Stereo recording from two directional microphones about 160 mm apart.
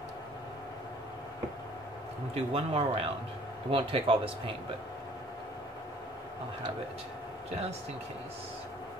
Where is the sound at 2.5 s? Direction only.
35° right (ahead or behind).